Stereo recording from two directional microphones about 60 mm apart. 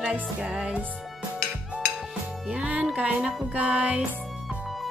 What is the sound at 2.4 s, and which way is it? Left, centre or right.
Music, right.